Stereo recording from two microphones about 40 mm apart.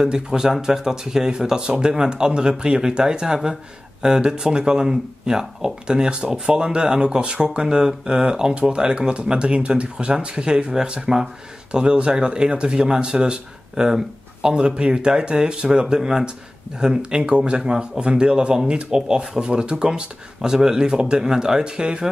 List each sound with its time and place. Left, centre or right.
0.0 s speech: centre
14.5 s speech: right
16.0 s speech: centre